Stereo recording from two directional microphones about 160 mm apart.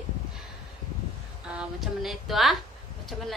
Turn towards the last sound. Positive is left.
turn(degrees=0)  # may be behind; listen again after turning